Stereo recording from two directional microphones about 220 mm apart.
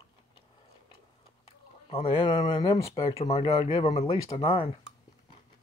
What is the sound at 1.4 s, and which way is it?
Speech, 25° left (ahead or behind).